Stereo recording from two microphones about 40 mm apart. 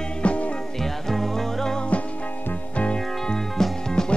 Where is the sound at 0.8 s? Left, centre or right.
Centre.